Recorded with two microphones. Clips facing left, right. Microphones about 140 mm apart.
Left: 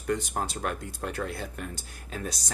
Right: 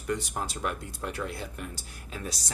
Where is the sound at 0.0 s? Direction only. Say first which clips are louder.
Left 2 dB; 50° left (ahead or behind).